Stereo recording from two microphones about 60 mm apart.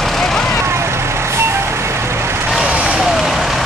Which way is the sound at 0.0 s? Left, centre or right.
Centre.